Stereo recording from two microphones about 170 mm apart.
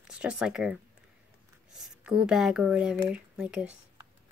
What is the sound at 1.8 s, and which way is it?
Speech, 5° right (ahead or behind).